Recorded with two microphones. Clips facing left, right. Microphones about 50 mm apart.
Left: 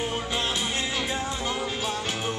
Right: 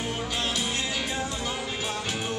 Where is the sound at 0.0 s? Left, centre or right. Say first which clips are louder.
Left 2 dB; left.